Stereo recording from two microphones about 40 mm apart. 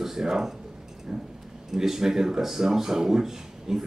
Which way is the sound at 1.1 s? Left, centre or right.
Centre.